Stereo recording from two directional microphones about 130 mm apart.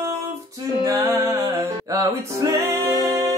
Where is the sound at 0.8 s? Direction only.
25° right (ahead or behind).